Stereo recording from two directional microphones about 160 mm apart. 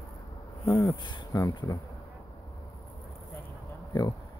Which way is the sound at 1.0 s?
25° left (ahead or behind).